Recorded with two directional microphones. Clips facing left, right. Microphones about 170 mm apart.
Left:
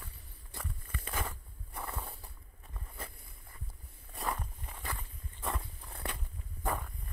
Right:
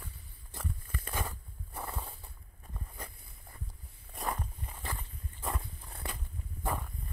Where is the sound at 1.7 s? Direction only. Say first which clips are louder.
Right 1 dB; 20° right (ahead or behind).